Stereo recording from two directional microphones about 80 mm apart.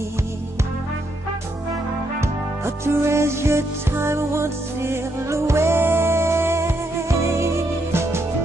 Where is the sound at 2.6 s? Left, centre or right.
Right.